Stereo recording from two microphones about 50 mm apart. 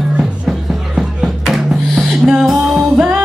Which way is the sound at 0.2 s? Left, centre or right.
Centre.